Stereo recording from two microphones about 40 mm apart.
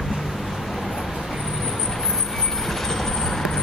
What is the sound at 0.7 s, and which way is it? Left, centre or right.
Vehicle, centre.